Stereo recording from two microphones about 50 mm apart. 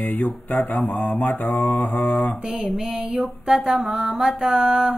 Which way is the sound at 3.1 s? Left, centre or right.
Centre.